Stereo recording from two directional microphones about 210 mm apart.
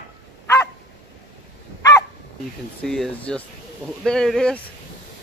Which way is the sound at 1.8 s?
15° left (ahead or behind).